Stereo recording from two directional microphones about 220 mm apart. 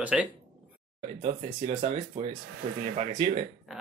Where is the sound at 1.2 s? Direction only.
30° right (ahead or behind).